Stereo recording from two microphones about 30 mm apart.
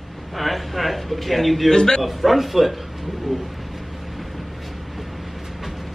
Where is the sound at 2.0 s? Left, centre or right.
Centre.